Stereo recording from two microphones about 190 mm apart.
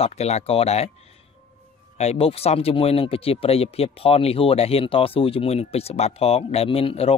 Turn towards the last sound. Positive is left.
turn(degrees=30)  # may be behind; listen again after turning